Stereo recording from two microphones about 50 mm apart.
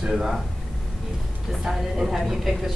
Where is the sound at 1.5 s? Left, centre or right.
Centre.